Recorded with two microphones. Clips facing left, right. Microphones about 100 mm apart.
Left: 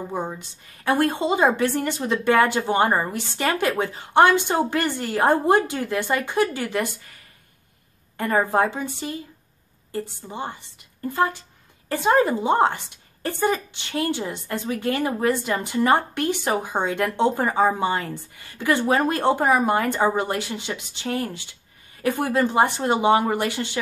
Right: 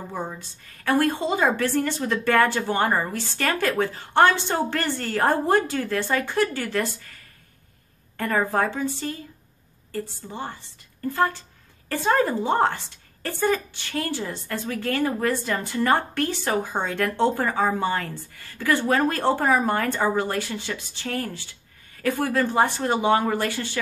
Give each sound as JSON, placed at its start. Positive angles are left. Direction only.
{"t": 0.1, "sound": "a woman's voice", "side_deg": 20}
{"t": 8.2, "sound": "a woman's voice", "side_deg": 20}